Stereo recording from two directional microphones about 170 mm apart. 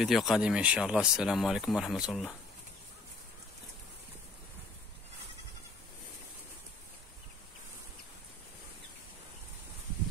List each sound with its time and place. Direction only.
0.0 s speech: centre (ahead or behind)